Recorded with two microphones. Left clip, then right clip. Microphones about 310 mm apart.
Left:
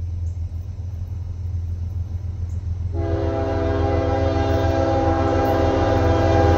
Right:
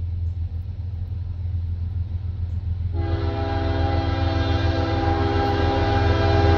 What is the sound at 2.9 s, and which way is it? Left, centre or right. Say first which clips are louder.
Train: left 5 dB; centre.